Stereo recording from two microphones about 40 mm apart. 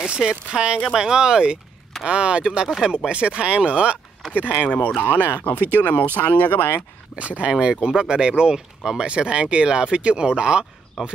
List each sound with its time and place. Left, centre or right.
0.0 s speech: centre
2.4 s speech: centre
3.1 s speech: right
4.3 s speech: left
7.2 s speech: right